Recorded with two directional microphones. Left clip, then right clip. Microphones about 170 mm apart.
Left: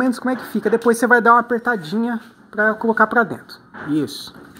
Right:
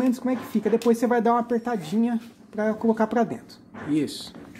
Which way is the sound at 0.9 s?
5° right (ahead or behind).